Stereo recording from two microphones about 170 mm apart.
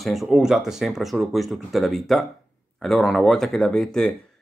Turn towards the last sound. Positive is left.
turn(degrees=5)  # may be behind; listen again after turning